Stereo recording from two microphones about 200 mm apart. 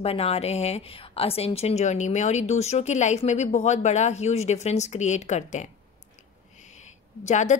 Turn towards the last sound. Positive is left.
turn(degrees=35)  # may be behind; listen again after turning